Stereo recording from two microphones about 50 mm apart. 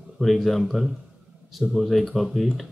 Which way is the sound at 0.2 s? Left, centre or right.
Centre.